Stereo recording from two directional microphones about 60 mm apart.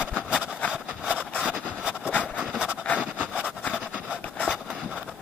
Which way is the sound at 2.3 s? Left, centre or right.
Centre.